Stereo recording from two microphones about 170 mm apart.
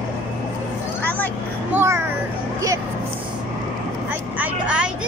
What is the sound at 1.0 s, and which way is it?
Vehicle, 10° left (ahead or behind).